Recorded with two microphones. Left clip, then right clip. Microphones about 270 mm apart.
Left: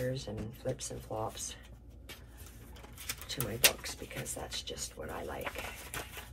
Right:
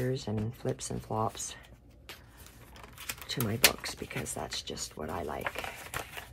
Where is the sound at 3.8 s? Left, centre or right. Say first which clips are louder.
Right 4 dB; right.